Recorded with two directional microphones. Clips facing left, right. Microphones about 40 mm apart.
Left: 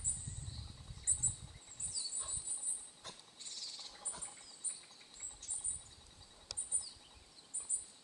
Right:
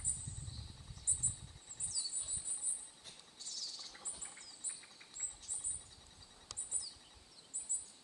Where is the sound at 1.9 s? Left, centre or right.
Centre.